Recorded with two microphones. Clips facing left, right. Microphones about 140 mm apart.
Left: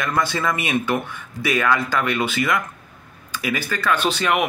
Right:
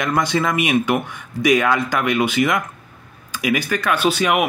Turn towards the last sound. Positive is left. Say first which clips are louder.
# right 3 dB
turn(degrees=-10)  # may be behind; listen again after turning